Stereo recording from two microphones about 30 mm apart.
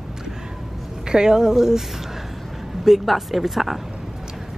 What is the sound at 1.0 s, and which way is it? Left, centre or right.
Speech, right.